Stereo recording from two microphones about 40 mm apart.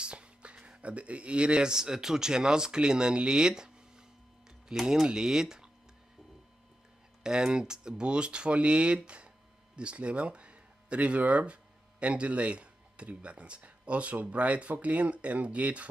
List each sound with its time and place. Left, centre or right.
0.0 s speech: right
7.2 s speech: centre; by 15.9 s right